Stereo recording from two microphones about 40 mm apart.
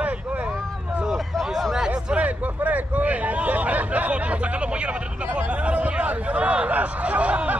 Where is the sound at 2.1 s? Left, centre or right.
Right.